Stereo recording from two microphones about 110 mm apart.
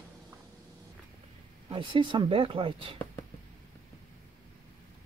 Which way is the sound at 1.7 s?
50° right (ahead or behind).